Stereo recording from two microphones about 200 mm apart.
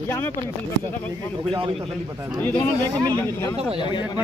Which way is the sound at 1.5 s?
25° right (ahead or behind).